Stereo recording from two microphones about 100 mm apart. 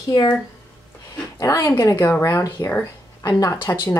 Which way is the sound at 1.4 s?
35° left (ahead or behind).